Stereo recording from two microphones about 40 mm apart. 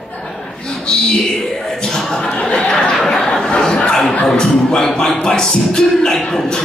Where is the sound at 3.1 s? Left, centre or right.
Centre.